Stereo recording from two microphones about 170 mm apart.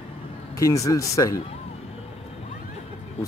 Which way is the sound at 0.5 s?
20° left (ahead or behind).